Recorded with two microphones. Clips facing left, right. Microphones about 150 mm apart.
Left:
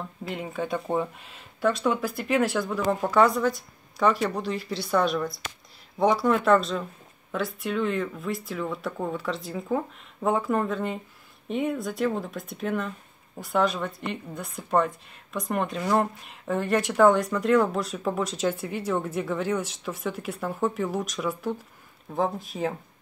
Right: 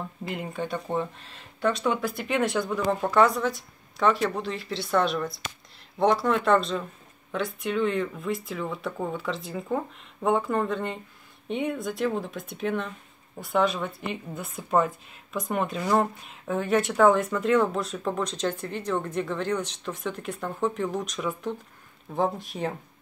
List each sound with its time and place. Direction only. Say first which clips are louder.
0.3 s a woman's voice: left 2 dB; centre (ahead or behind)